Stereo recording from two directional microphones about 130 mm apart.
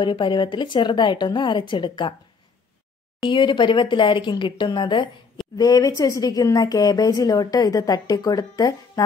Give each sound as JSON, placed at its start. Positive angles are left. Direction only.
{"t": 0.0, "sound": "speech", "side_deg": 40}
{"t": 3.3, "sound": "speech", "side_deg": 40}